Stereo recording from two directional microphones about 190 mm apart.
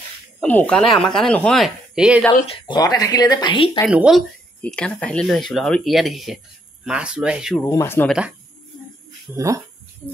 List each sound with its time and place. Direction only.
0.4 s speech: 5° left (ahead or behind)
2.5 s speech: 20° left (ahead or behind)
3.9 s speech: 5° right (ahead or behind)
4.6 s speech: 5° left (ahead or behind)
7.6 s speech: 15° left (ahead or behind)
8.1 s speech: 5° right (ahead or behind)
9.3 s speech: 15° right (ahead or behind)